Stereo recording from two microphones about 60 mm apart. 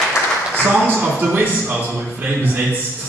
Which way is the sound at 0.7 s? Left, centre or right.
Right.